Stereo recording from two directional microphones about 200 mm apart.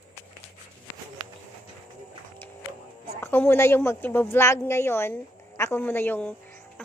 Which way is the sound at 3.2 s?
10° left (ahead or behind).